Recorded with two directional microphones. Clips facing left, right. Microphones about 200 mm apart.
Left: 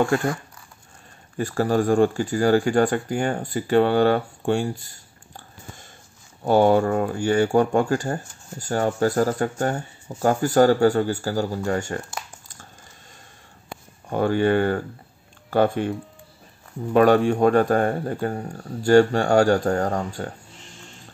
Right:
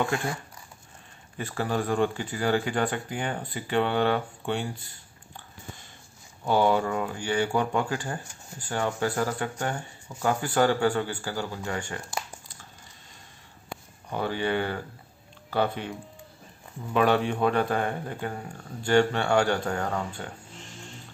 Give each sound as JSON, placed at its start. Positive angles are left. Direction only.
{"t": 1.4, "sound": "speech", "side_deg": 40}
{"t": 14.1, "sound": "speech", "side_deg": 45}
{"t": 16.9, "sound": "speech", "side_deg": 45}